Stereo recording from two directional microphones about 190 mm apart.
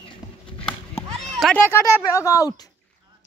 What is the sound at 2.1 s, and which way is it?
Speech, 15° left (ahead or behind).